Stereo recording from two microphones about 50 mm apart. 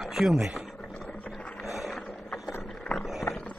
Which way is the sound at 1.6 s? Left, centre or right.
Centre.